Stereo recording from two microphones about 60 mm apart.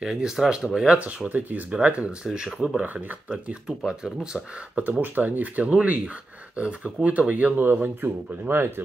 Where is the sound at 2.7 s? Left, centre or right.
Right.